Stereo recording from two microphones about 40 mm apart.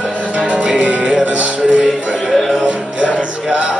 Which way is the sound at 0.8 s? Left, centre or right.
Right.